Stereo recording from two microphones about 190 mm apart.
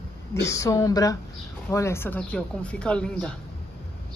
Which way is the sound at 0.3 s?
15° left (ahead or behind).